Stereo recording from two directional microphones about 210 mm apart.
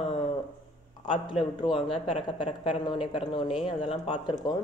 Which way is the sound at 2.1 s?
30° left (ahead or behind).